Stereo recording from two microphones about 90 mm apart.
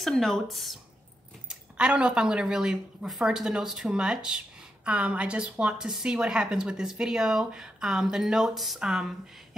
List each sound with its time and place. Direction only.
0.0 s speech: 5° left (ahead or behind)
1.5 s a woman's voice: 10° right (ahead or behind)